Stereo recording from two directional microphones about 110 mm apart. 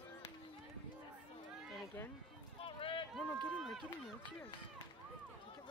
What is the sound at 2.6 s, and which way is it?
Run, 55° left (ahead or behind).